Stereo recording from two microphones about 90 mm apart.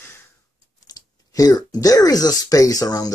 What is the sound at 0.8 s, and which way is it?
Speech, 45° left (ahead or behind).